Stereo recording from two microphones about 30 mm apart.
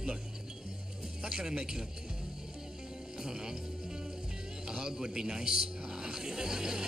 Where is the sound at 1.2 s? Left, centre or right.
Right.